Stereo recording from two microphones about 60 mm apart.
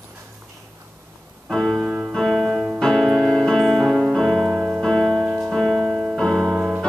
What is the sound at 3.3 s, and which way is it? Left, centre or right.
Music, centre.